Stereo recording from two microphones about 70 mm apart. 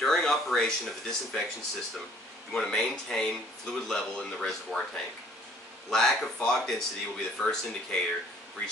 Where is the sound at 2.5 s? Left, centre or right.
Centre.